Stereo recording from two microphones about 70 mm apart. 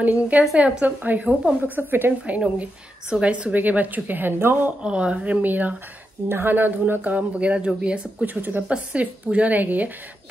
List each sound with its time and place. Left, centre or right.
0.0 s speech: right
2.4 s speech: centre; by 4.7 s right
4.8 s speech: centre